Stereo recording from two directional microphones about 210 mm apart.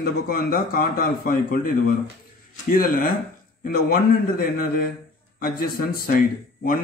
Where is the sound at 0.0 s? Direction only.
45° left (ahead or behind).